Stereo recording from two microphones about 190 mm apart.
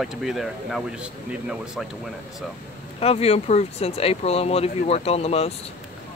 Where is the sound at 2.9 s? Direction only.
30° left (ahead or behind).